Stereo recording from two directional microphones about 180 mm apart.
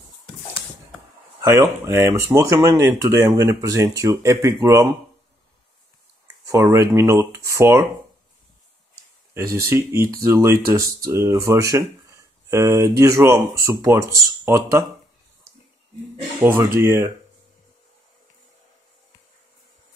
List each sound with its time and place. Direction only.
1.4 s speech: 15° right (ahead or behind)
6.4 s speech: 15° right (ahead or behind)
9.3 s speech: 15° right (ahead or behind)
16.3 s speech: 15° right (ahead or behind)